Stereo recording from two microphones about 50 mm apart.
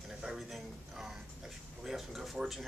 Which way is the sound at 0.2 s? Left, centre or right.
Centre.